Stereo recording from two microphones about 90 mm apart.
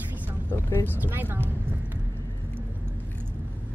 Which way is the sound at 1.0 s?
20° right (ahead or behind).